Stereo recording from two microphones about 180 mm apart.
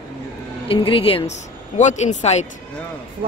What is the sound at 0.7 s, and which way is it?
A woman's voice, 30° left (ahead or behind).